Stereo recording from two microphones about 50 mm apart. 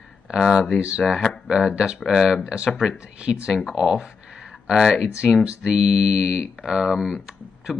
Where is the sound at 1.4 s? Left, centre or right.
Centre.